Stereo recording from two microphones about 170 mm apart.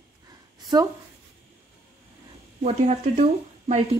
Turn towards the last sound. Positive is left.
turn(degrees=-45)  # may be behind; listen again after turning